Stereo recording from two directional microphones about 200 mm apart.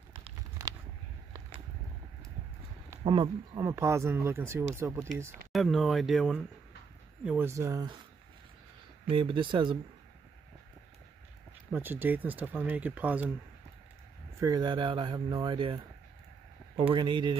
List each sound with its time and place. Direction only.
0.2 s a sound: 20° right (ahead or behind)
3.0 s speech: 25° right (ahead or behind)
5.5 s speech: centre (ahead or behind); by 7.9 s 15° right (ahead or behind)
9.1 s speech: 25° right (ahead or behind)
11.7 s speech: 10° right (ahead or behind)
14.4 s speech: 20° right (ahead or behind)
16.9 s speech: 25° right (ahead or behind)